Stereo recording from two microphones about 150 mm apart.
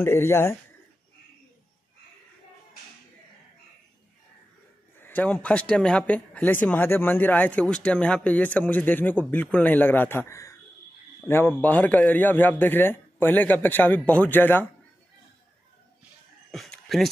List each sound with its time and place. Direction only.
0.0 s speech: 15° left (ahead or behind)
5.0 s speech: 10° left (ahead or behind)
16.5 s a sound: centre (ahead or behind)